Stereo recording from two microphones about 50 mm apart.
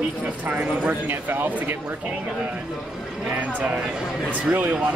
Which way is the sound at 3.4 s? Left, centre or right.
Right.